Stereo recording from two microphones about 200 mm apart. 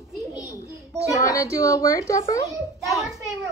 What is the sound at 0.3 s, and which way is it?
A child's voice, 15° left (ahead or behind).